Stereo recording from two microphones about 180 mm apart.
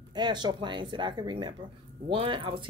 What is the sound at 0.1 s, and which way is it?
Speech, 25° right (ahead or behind).